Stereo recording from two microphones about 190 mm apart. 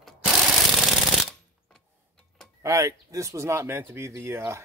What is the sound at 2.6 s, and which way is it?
Speech, 15° right (ahead or behind).